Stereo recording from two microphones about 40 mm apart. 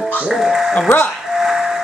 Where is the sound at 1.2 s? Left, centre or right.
Centre.